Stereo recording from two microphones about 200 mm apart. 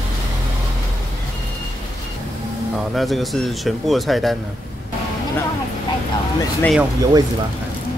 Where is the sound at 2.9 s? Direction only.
Centre (ahead or behind).